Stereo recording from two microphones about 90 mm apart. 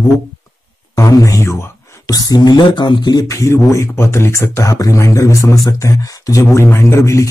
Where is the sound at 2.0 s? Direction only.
45° left (ahead or behind).